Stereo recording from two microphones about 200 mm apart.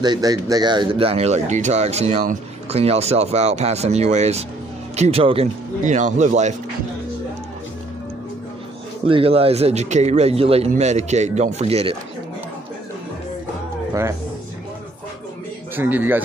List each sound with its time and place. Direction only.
0.0 s speech: 20° right (ahead or behind); by 6.5 s 35° right (ahead or behind)
9.0 s speech: 25° right (ahead or behind)
15.7 s speech: 10° right (ahead or behind)